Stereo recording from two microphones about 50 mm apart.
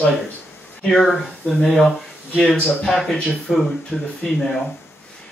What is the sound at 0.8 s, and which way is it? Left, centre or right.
Speech, centre.